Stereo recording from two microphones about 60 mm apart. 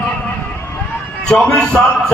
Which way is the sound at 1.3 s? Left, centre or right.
Centre.